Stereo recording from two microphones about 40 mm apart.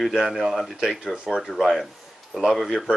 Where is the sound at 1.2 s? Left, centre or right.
Centre.